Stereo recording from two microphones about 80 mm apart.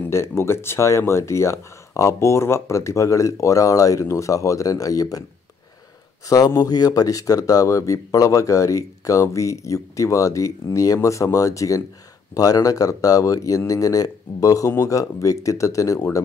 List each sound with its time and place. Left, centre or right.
0.1 s speech: left
6.2 s speech: left